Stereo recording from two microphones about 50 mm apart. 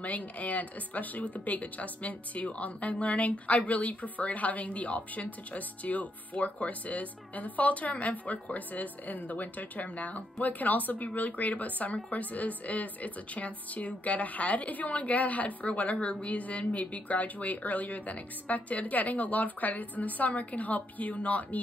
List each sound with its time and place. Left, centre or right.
0.0 s speech: left